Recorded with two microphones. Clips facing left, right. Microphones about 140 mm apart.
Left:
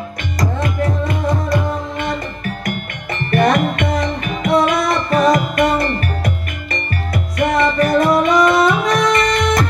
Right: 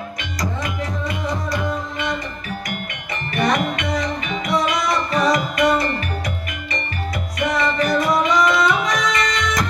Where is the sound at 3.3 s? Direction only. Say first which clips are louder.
Left 5 dB; 55° left (ahead or behind).